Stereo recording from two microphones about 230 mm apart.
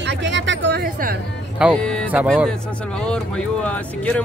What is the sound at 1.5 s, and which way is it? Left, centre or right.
Speech, centre.